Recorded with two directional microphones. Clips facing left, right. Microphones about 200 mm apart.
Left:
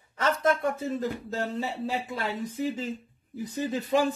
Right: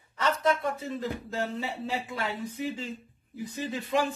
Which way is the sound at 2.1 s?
40° left (ahead or behind).